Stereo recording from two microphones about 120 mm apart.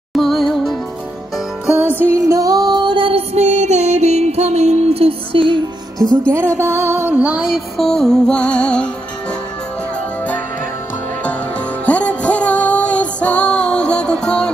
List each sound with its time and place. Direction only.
0.1 s music: centre (ahead or behind)
1.8 s music: 15° right (ahead or behind); by 5.6 s 45° right (ahead or behind)
6.3 s music: 20° right (ahead or behind); by 8.8 s 10° left (ahead or behind)
11.8 s music: 10° left (ahead or behind)